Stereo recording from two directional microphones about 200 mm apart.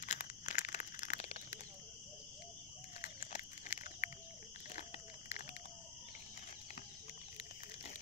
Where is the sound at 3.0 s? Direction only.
35° left (ahead or behind).